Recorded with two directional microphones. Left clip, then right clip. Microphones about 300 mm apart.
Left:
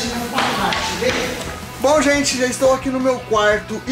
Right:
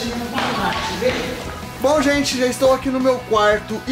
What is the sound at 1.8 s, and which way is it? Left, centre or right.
Speech, centre.